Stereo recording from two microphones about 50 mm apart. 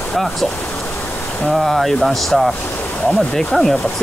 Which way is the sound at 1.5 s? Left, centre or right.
Centre.